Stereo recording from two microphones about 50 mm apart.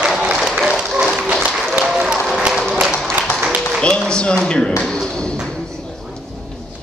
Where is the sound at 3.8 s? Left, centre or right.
Centre.